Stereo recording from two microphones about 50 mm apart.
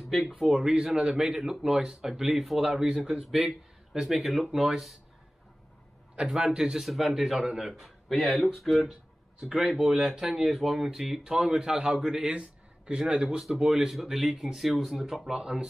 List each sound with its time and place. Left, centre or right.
0.4 s speech: centre
0.7 s a man's voice: centre
4.1 s speech: centre
6.4 s speech: centre